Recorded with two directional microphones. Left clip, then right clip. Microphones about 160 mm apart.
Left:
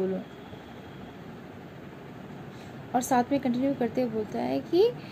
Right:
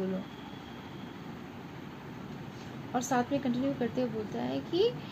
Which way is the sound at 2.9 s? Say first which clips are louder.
Left 5 dB; 20° left (ahead or behind).